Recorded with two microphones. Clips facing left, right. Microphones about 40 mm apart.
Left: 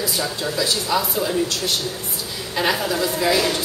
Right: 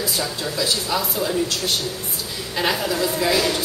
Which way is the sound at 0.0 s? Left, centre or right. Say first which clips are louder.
Left 1 dB; centre.